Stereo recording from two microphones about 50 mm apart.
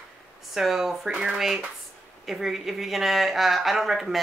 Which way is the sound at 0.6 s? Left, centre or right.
Centre.